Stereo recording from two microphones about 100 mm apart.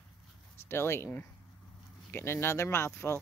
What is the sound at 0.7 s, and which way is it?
Speech, 25° left (ahead or behind).